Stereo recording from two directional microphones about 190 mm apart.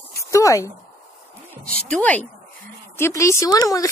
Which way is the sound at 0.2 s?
15° left (ahead or behind).